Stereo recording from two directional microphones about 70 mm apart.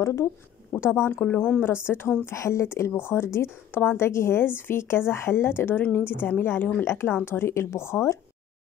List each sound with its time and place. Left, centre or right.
0.0 s speech: left
1.2 s speech: left
2.2 s speech: left